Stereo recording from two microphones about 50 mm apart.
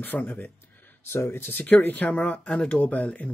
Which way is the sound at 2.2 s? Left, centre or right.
Left.